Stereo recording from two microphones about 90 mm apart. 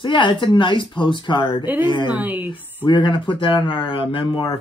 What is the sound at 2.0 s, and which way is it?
Speech, 20° right (ahead or behind).